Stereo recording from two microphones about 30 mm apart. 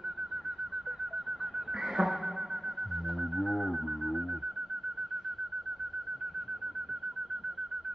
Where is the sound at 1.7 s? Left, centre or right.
Centre.